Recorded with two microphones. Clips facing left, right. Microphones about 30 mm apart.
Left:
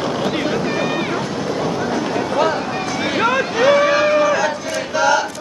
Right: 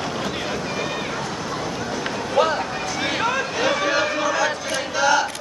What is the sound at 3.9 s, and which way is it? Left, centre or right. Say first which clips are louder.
Music: left 6 dB; centre.